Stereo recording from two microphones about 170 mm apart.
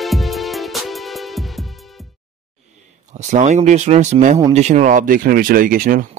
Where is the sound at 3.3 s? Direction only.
45° right (ahead or behind).